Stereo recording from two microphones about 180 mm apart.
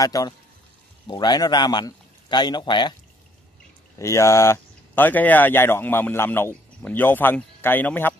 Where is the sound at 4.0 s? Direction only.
15° left (ahead or behind).